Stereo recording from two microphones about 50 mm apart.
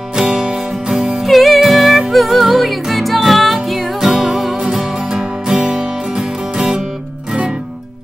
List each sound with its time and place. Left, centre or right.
0.2 s music: centre
0.9 s music: centre